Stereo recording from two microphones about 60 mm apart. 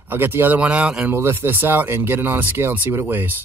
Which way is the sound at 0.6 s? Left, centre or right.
Right.